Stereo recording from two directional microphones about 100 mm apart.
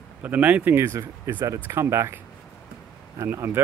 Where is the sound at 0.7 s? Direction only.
30° right (ahead or behind).